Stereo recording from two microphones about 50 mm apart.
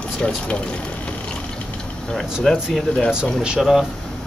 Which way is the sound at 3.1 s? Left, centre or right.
Centre.